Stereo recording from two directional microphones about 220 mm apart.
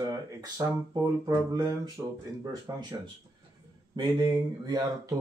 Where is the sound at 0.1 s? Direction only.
15° right (ahead or behind).